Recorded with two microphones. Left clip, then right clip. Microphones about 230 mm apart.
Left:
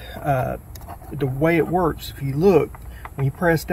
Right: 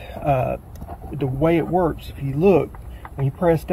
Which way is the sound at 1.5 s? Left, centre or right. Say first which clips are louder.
Even; left.